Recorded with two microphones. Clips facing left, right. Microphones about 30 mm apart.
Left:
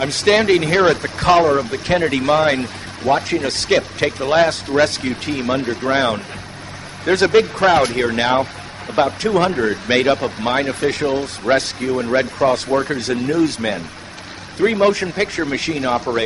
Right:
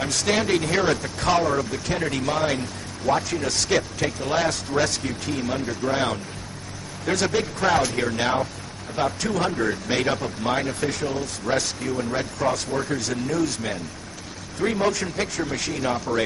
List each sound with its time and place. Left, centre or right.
0.0 s speech: left